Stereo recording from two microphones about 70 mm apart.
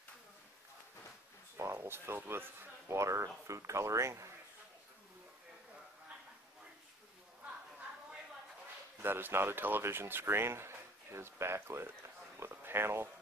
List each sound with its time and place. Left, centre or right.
1.6 s speech: right
9.0 s speech: right